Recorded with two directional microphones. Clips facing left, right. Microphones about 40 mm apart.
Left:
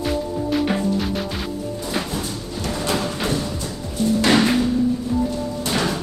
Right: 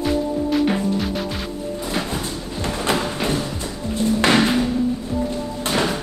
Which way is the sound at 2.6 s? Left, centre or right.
Right.